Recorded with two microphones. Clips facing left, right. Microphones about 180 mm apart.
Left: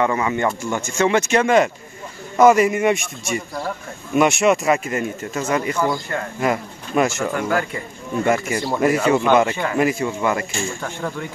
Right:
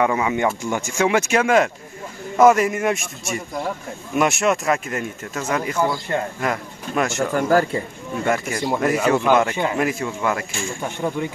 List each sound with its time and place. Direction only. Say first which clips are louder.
0.0 s speech: even; 10° right (ahead or behind)
6.1 s speech: right 3 dB; 25° right (ahead or behind)
6.4 s speech: left 3 dB; 5° left (ahead or behind)
7.3 s speech: right 4 dB; 35° right (ahead or behind)
8.3 s speech: left 1 dB; 5° left (ahead or behind)
10.8 s speech: right 3 dB; 20° right (ahead or behind)